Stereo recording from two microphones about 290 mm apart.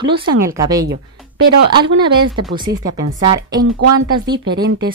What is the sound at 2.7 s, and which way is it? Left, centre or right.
Speech, right.